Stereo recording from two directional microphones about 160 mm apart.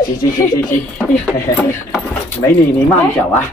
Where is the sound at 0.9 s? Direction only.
5° left (ahead or behind).